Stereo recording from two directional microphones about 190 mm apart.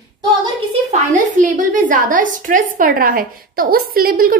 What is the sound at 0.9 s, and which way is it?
A woman's voice, 40° right (ahead or behind).